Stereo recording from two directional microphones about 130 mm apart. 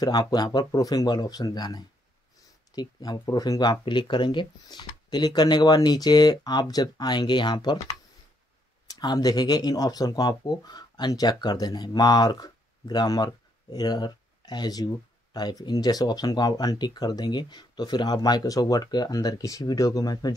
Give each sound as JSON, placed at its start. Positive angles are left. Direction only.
{"t": 0.0, "sound": "speech", "side_deg": 30}